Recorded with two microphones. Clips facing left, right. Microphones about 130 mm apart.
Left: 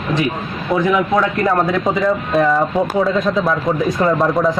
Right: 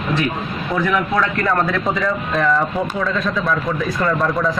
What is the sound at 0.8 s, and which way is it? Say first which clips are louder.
A man's voice: left 3 dB; 20° left (ahead or behind).